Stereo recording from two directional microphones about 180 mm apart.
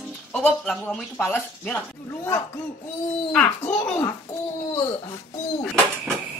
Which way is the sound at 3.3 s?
5° left (ahead or behind).